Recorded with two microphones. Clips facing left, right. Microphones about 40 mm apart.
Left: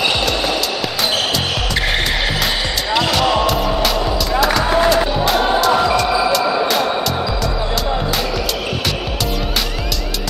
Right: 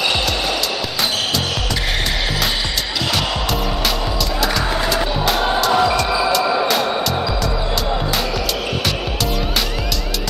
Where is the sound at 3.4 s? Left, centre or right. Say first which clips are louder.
Left 4 dB; centre.